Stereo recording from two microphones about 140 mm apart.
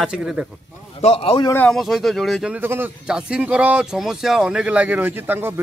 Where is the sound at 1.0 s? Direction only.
45° left (ahead or behind).